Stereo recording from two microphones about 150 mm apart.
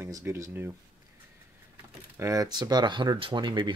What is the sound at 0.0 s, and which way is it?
Speech, 15° right (ahead or behind).